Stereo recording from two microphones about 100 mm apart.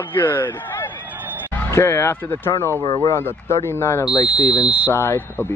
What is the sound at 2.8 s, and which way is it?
Speech, 35° left (ahead or behind).